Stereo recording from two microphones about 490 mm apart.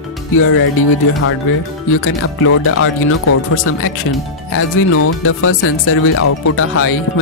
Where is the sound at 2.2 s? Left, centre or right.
Left.